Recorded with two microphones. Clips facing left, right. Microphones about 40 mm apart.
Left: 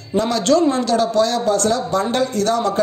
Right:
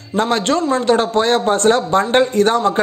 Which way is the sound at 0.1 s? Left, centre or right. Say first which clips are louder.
Even; right.